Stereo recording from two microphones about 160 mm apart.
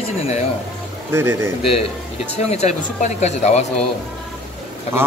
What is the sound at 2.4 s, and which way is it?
Speech, 45° left (ahead or behind).